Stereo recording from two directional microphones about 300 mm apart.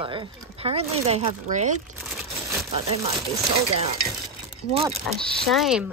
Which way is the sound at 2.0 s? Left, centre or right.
Centre.